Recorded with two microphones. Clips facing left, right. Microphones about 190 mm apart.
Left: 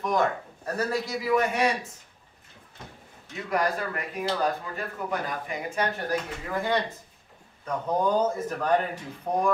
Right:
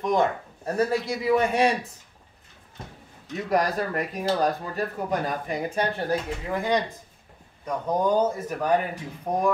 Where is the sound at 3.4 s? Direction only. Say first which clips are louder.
Right 3 dB; 40° right (ahead or behind).